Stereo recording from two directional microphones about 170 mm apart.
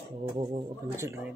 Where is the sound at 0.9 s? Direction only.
15° right (ahead or behind).